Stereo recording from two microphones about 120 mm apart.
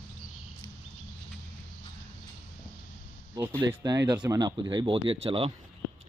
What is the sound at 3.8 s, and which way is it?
Speech, 30° right (ahead or behind).